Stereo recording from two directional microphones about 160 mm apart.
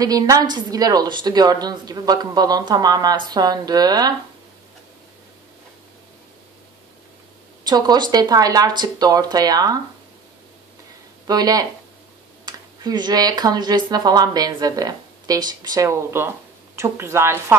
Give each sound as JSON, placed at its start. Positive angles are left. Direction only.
{"t": 0.0, "sound": "a woman's voice", "side_deg": -25}
{"t": 7.6, "sound": "a woman's voice", "side_deg": -25}
{"t": 11.2, "sound": "a woman's voice", "side_deg": -25}